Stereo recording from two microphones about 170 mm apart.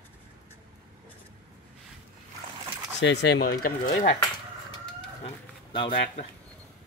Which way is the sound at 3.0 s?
90° left.